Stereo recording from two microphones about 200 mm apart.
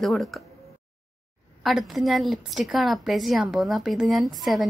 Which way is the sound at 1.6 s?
Centre (ahead or behind).